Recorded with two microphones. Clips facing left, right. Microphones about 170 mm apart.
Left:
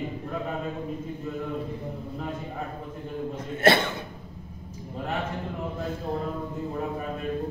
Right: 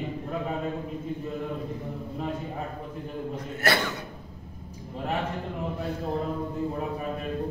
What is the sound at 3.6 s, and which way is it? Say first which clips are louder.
Speech: left 6 dB; 25° left (ahead or behind).